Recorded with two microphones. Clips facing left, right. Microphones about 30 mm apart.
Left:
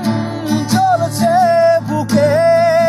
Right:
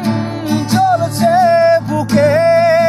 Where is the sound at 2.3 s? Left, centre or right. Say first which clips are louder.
Right 1 dB; right.